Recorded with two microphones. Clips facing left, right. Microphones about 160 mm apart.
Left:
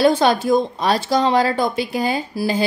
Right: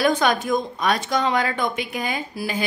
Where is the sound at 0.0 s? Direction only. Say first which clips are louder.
Left 5 dB; 30° left (ahead or behind).